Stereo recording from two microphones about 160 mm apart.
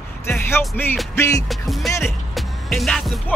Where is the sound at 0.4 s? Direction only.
15° left (ahead or behind).